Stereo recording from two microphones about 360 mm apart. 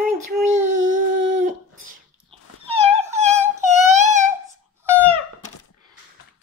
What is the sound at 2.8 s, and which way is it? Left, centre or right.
Dog, centre.